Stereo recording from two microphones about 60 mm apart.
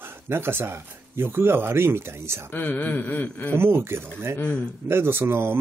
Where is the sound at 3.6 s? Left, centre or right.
Right.